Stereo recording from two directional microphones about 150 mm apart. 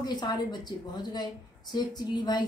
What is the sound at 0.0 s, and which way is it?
A woman's voice, 25° left (ahead or behind).